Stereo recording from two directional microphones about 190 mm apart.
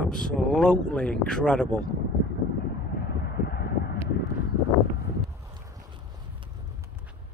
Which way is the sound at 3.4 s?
55° left (ahead or behind).